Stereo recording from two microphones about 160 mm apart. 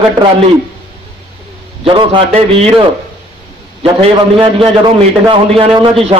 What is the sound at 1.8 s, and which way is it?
Speech, 35° right (ahead or behind).